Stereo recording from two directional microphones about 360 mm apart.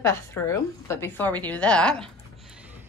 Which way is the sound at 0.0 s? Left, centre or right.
Centre.